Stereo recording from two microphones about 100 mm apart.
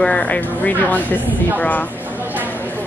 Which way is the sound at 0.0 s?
10° left (ahead or behind).